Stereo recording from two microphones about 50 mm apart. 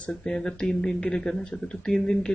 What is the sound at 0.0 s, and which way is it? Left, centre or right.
Speech, centre.